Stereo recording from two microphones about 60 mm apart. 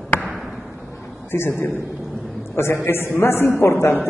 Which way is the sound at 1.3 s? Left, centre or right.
Left.